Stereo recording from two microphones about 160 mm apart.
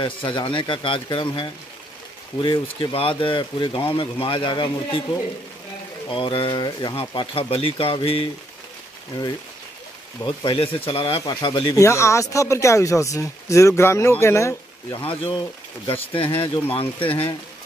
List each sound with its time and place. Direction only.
0.0 s speech: 30° left (ahead or behind)
6.0 s speech: 35° left (ahead or behind)
10.2 s speech: 30° left (ahead or behind)
11.7 s speech: 20° left (ahead or behind)
15.0 s speech: 30° left (ahead or behind)